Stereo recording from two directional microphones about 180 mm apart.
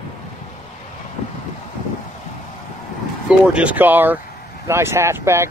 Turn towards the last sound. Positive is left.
turn(degrees=-15)  # may be behind; listen again after turning